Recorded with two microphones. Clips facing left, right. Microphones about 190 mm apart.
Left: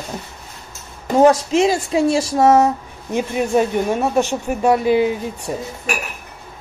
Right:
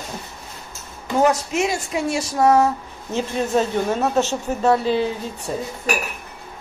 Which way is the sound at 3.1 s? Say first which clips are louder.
Left 3 dB; 15° left (ahead or behind).